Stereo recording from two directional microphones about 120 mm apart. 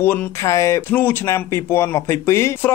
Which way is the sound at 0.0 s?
20° left (ahead or behind).